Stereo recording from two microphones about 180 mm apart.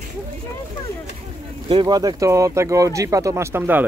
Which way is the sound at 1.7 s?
25° right (ahead or behind).